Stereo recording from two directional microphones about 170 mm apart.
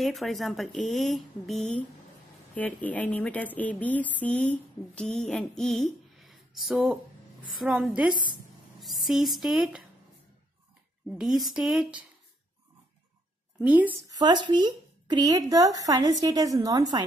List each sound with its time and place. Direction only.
0.0 s a woman's voice: centre (ahead or behind)
11.1 s speech: centre (ahead or behind)
13.6 s a woman's voice: 10° right (ahead or behind)
14.0 s a woman's voice: 25° right (ahead or behind)